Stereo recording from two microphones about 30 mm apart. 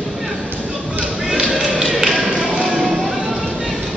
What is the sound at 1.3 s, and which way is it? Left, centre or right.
Music, centre.